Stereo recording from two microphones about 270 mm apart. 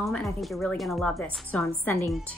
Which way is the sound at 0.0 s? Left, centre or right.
Centre.